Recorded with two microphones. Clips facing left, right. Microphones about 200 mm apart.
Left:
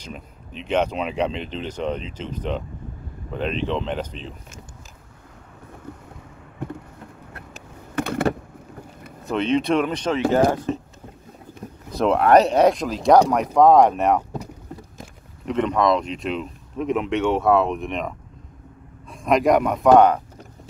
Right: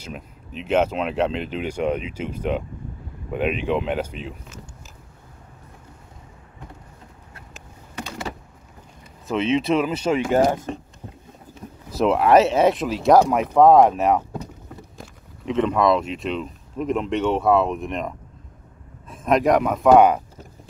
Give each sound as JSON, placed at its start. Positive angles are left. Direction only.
{"t": 0.0, "sound": "speech", "side_deg": -5}
{"t": 7.9, "sound": "power windows", "side_deg": 55}
{"t": 9.2, "sound": "speech", "side_deg": 0}
{"t": 11.9, "sound": "speech", "side_deg": -5}
{"t": 15.4, "sound": "speech", "side_deg": 0}